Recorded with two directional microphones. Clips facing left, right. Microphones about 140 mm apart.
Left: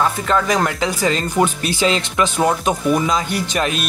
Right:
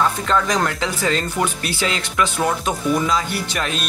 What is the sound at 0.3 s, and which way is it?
Speech, 5° left (ahead or behind).